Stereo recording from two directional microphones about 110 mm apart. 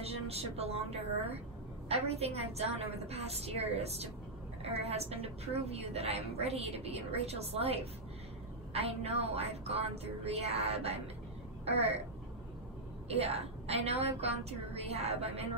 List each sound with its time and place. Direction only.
0.0 s a woman's voice: 65° right (ahead or behind)
13.1 s a woman's voice: 70° right (ahead or behind)